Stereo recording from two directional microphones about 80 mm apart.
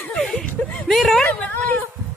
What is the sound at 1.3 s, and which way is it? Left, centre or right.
Speech, centre.